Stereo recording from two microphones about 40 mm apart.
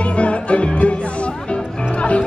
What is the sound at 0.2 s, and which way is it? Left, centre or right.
Music, left.